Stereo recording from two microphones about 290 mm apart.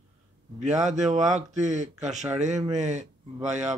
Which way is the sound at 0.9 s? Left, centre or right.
Right.